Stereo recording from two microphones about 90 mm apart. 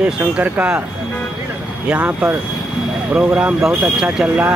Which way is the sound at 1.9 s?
15° right (ahead or behind).